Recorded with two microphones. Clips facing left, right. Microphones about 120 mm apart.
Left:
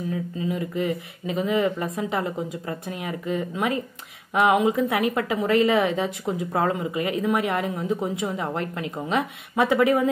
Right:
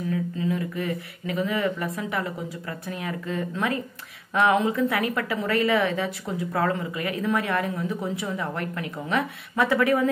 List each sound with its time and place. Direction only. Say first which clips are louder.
0.1 s a woman's voice: right 3 dB; 25° left (ahead or behind)